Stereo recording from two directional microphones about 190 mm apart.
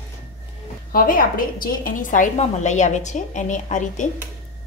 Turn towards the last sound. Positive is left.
turn(degrees=40)  # may be behind; listen again after turning